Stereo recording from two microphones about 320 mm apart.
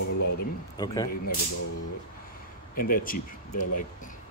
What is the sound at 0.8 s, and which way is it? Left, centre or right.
Speech, centre.